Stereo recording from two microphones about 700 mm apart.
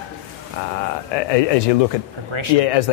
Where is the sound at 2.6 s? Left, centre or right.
Left.